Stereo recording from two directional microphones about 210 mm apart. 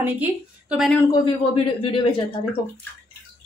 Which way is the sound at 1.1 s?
25° left (ahead or behind).